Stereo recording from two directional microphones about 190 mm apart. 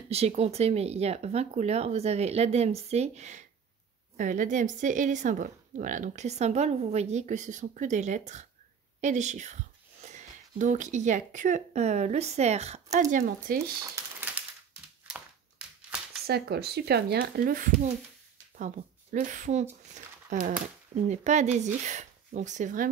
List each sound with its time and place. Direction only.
0.1 s a woman's voice: 35° right (ahead or behind)
13.7 s a sound: 15° right (ahead or behind)
16.3 s speech: 55° right (ahead or behind)
19.1 s a woman's voice: 40° right (ahead or behind)